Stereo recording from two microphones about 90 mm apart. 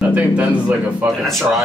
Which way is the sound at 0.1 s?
15° right (ahead or behind).